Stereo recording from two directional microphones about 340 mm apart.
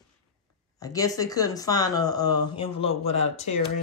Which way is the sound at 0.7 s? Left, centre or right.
Centre.